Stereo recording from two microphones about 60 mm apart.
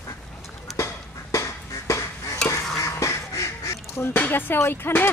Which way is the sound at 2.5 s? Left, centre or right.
Left.